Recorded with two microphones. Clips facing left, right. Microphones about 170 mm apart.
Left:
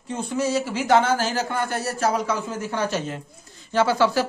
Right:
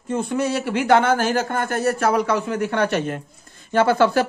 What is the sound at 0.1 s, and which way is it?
Speech, 55° right (ahead or behind).